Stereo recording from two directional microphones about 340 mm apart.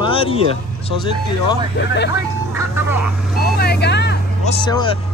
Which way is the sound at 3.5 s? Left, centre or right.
Left.